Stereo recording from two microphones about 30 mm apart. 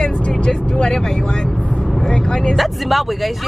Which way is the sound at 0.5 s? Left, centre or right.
Left.